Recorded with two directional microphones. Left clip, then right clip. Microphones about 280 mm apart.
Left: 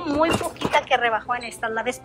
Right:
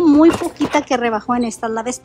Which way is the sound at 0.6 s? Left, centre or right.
Centre.